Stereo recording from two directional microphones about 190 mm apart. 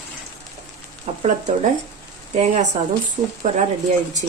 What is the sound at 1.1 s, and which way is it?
Stir, 35° right (ahead or behind).